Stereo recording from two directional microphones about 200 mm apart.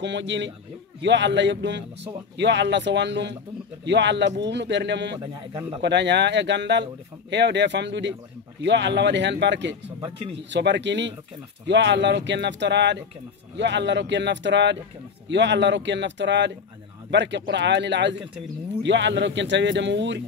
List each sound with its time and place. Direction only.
0.0 s speech: 60° right (ahead or behind)
5.2 s speech: 15° right (ahead or behind)
5.8 s speech: 60° right (ahead or behind)